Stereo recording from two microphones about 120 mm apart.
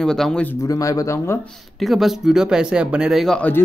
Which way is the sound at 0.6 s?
25° left (ahead or behind).